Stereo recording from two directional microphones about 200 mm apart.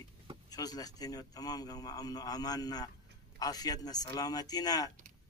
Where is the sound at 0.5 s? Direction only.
20° left (ahead or behind).